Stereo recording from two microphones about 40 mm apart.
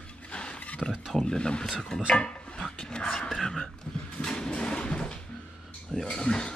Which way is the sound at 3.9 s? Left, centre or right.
Left.